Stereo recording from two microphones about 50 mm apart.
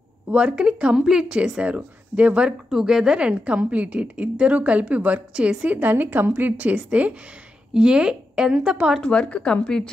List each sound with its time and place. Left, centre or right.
0.3 s a woman's voice: right
5.3 s a woman's voice: centre
5.7 s a woman's voice: right; by 8.7 s centre
9.0 s a woman's voice: left